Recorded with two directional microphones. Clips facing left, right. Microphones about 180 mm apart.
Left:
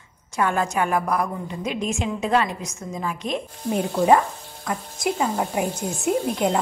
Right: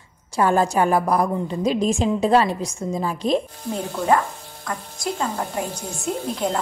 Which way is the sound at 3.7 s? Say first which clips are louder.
Left 3 dB; 15° left (ahead or behind).